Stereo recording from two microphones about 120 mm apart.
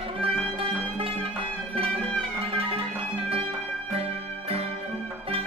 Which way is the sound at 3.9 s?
50° right (ahead or behind).